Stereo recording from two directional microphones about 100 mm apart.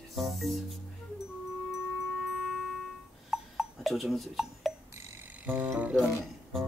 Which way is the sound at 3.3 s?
Centre (ahead or behind).